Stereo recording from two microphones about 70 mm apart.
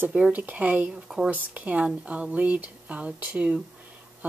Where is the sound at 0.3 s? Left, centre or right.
Right.